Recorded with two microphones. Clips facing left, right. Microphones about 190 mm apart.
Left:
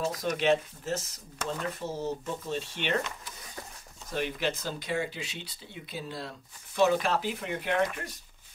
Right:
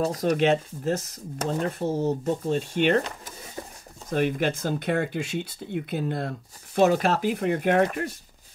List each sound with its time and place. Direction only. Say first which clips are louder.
0.0 s speech: right 6 dB; 40° right (ahead or behind)
1.4 s speech: right 7 dB; 40° right (ahead or behind)